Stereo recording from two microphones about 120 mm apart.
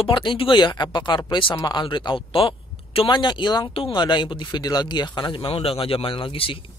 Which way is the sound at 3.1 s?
40° left (ahead or behind).